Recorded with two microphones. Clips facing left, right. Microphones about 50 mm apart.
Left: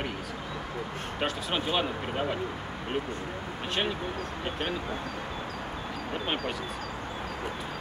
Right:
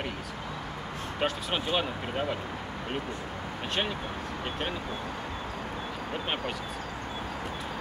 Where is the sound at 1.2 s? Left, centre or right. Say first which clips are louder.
Even; centre.